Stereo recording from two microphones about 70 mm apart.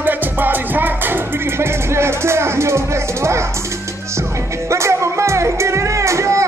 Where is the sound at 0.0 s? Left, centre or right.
Right.